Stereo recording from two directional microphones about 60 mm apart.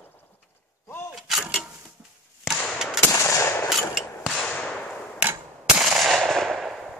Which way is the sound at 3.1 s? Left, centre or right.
Left.